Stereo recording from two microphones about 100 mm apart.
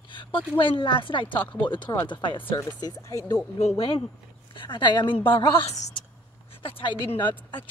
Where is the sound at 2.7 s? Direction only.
40° left (ahead or behind).